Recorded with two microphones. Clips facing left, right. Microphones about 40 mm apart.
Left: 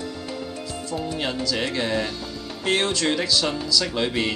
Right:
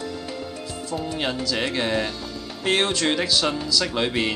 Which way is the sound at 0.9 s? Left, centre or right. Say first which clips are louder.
Right 1 dB; centre.